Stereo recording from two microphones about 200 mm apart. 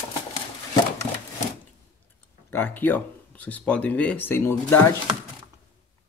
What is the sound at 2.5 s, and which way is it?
Speech, 10° left (ahead or behind).